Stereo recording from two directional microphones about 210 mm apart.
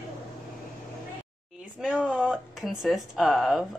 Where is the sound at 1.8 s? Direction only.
5° right (ahead or behind).